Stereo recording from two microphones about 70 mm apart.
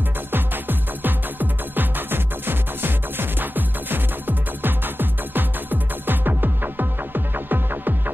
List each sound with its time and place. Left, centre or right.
0.3 s music: right